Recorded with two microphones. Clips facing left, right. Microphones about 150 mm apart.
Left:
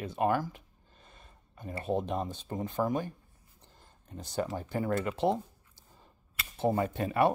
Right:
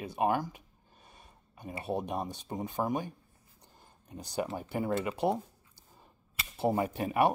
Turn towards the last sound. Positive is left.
turn(degrees=-15)  # may be behind; listen again after turning